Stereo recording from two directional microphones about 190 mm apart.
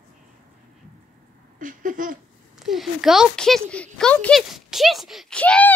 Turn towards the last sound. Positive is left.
turn(degrees=5)  # may be behind; listen again after turning